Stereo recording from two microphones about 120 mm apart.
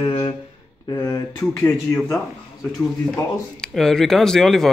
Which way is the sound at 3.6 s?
5° left (ahead or behind).